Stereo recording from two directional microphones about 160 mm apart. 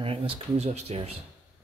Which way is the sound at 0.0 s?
35° right (ahead or behind).